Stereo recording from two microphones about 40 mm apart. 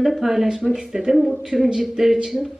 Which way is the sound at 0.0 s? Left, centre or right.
Centre.